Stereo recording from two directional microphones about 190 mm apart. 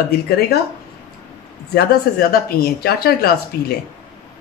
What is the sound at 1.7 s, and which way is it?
Speech, 55° left (ahead or behind).